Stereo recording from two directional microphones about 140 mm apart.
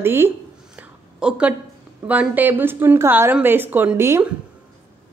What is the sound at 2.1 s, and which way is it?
A woman's voice, 10° right (ahead or behind).